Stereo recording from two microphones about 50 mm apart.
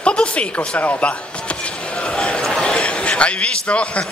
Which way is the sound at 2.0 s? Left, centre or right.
Centre.